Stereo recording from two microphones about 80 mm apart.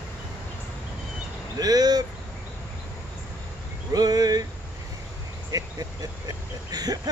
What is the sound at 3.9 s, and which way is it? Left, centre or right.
Speech, right.